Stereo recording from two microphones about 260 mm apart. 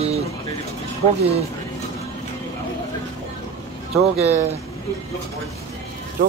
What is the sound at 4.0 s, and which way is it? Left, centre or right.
Speech, right.